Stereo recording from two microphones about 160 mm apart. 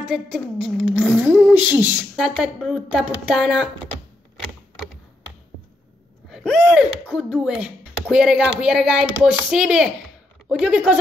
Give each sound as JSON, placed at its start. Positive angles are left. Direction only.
{"t": 0.1, "sound": "a woman's voice", "side_deg": 0}
{"t": 6.3, "sound": "speech", "side_deg": 0}